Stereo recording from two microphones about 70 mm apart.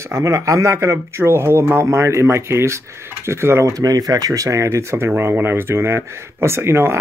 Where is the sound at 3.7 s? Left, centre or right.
Right.